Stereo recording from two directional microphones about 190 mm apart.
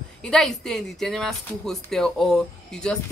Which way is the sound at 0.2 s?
Centre (ahead or behind).